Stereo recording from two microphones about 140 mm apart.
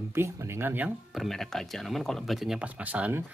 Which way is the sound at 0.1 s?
20° right (ahead or behind).